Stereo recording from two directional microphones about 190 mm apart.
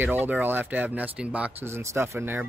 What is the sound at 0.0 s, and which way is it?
Speech, 10° right (ahead or behind).